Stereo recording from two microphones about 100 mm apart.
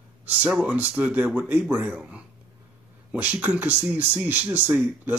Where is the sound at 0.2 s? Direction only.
15° right (ahead or behind).